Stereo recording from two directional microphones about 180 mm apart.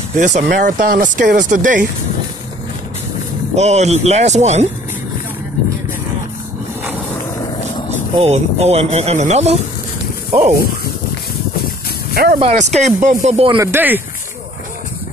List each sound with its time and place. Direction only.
0.5 s speech: 50° right (ahead or behind)
3.5 s speech: 40° right (ahead or behind)
8.2 s speech: 35° right (ahead or behind)
10.3 s speech: 50° right (ahead or behind)
12.1 s speech: 60° right (ahead or behind)
12.4 s speech: 35° right (ahead or behind)
13.6 s speech: 10° right (ahead or behind)